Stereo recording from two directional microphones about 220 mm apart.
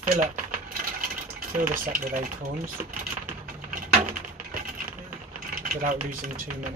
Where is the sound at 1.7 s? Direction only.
40° right (ahead or behind).